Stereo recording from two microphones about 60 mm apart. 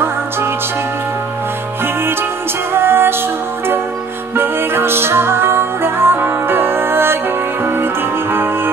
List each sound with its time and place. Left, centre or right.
2.7 s music: right
4.4 s music: right